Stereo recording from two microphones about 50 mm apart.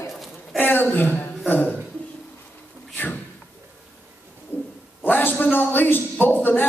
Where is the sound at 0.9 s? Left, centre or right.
Left.